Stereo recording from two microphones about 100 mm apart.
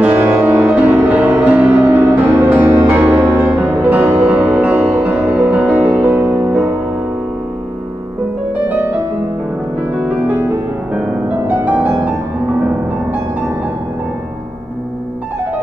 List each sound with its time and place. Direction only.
0.0 s music: 15° right (ahead or behind)
3.5 s music: 20° right (ahead or behind)
9.9 s music: 15° right (ahead or behind)